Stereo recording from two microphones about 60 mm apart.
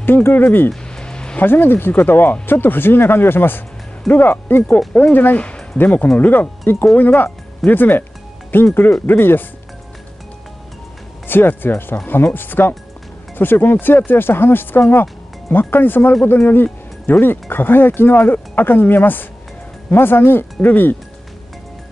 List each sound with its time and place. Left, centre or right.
0.0 s speech: left
0.7 s music: centre
1.4 s speech: left
11.2 s speech: left